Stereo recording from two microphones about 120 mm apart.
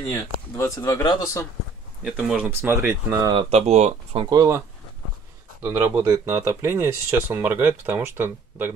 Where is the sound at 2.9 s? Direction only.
20° right (ahead or behind).